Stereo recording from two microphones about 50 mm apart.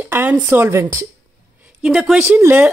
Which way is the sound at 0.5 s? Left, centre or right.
Right.